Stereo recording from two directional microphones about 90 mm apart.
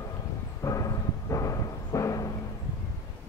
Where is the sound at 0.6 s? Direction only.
35° left (ahead or behind).